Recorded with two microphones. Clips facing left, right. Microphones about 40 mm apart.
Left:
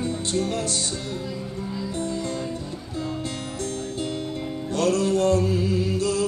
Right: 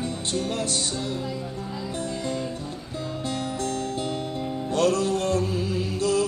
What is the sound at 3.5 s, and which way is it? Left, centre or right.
Music, right.